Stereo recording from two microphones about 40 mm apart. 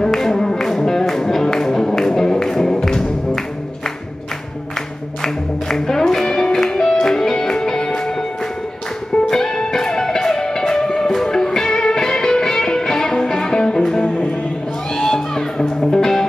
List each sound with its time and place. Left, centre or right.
0.0 s music: centre
4.7 s music: centre
9.3 s music: centre
15.0 s music: centre